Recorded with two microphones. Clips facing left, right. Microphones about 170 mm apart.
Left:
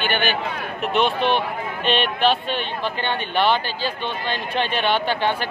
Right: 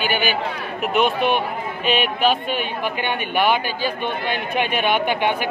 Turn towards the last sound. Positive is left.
turn(degrees=-15)  # may be behind; listen again after turning